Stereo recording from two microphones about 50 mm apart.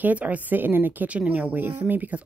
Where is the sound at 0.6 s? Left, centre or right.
Right.